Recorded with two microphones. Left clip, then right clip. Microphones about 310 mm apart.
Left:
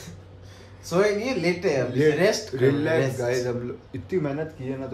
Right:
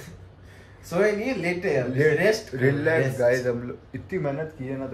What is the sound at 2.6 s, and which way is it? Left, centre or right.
Speech, centre.